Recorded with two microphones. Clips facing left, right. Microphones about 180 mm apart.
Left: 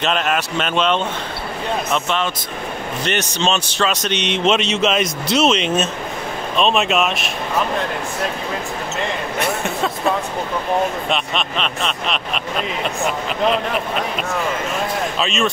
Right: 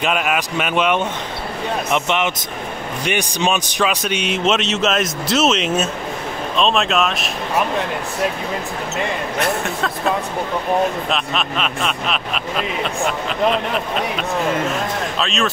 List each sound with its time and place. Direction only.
0.0 s a man's voice: 10° right (ahead or behind)
9.4 s speech: centre (ahead or behind)
15.1 s speech: centre (ahead or behind)